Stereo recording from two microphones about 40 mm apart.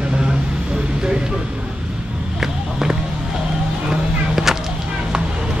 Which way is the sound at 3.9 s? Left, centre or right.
Centre.